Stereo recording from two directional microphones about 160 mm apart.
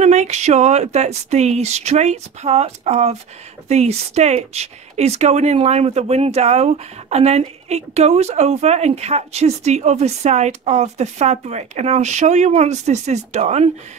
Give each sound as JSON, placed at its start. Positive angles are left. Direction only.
{"t": 0.0, "sound": "speech", "side_deg": -45}